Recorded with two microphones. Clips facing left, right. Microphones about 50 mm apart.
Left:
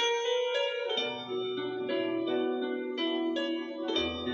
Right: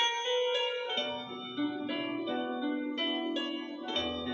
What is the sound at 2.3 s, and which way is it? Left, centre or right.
Harp, right.